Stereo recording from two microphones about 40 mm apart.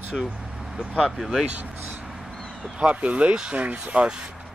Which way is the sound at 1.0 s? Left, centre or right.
Centre.